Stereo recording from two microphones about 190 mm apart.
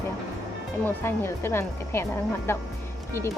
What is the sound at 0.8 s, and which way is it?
Speech, 10° left (ahead or behind).